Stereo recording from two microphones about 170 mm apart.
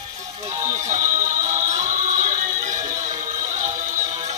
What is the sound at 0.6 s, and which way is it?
Music, 45° right (ahead or behind).